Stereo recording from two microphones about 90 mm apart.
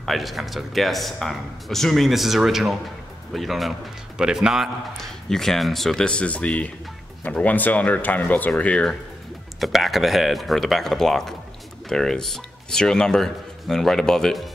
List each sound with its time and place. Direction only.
0.0 s a man's voice: centre (ahead or behind)
4.9 s speech: 5° left (ahead or behind)
9.6 s speech: centre (ahead or behind)